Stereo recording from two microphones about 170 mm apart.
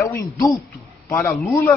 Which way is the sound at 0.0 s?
20° left (ahead or behind).